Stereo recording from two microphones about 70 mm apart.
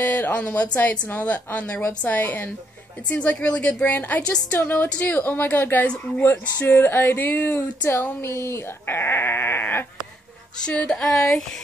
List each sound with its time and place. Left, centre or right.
0.0 s a woman's voice: left
4.5 s a woman's voice: left
6.6 s a sound: left
10.6 s speech: centre